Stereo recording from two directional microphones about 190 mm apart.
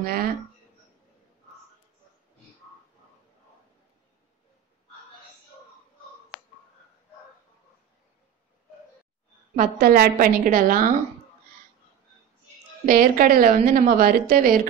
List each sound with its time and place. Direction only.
0.0 s a woman's voice: 50° right (ahead or behind)
9.6 s a woman's voice: 50° right (ahead or behind)
12.8 s a woman's voice: 45° right (ahead or behind)